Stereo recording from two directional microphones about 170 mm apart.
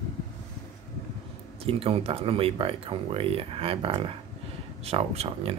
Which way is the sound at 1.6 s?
35° right (ahead or behind).